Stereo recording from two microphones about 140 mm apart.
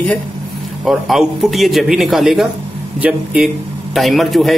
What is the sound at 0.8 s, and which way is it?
A man's voice, centre (ahead or behind).